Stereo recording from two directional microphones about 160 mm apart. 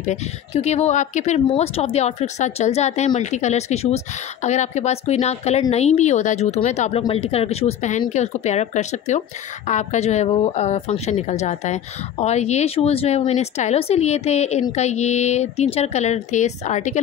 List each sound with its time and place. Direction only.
0.0 s speech: 45° left (ahead or behind)